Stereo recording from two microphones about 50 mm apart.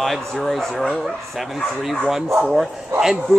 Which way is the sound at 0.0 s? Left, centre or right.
Centre.